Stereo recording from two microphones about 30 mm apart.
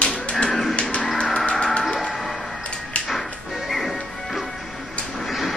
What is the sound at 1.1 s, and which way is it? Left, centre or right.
Music, left.